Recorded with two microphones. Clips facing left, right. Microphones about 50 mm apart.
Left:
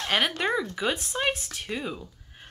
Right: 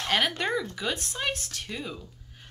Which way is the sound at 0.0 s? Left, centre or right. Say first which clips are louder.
Left 1 dB; centre.